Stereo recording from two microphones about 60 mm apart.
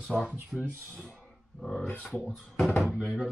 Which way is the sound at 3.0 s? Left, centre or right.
Centre.